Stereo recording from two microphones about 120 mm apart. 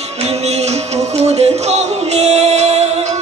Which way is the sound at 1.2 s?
65° right (ahead or behind).